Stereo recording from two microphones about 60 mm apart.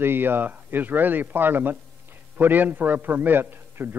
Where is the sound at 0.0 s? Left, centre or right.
Right.